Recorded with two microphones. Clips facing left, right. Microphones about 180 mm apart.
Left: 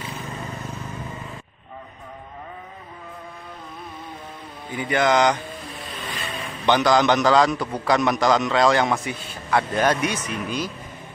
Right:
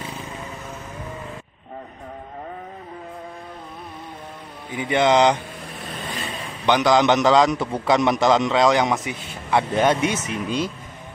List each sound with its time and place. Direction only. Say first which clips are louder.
4.8 s a man's voice: right 2 dB; 25° right (ahead or behind)
6.6 s a man's voice: right 1 dB; 15° right (ahead or behind)